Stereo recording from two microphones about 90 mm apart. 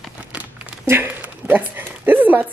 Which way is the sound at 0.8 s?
25° right (ahead or behind).